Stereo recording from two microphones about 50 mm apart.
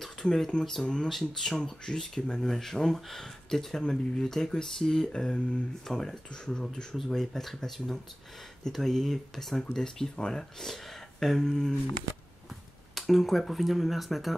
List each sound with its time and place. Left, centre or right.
0.0 s speech: centre
12.9 s speech: centre